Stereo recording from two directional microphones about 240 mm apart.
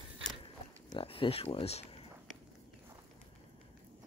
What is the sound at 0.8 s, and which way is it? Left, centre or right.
Speech, left.